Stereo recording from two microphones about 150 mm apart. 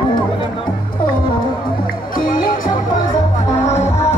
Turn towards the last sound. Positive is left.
turn(degrees=50)  # may be behind; listen again after turning